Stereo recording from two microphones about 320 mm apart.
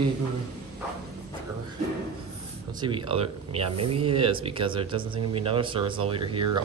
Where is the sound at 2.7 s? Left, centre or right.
Centre.